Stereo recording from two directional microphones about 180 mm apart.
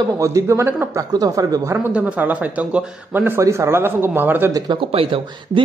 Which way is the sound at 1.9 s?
5° right (ahead or behind).